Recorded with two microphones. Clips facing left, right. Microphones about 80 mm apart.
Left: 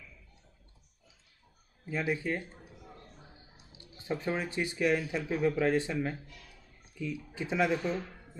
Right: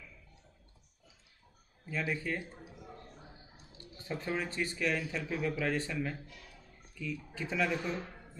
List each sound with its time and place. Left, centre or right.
1.9 s speech: centre
2.3 s a sound: centre
3.5 s speech: centre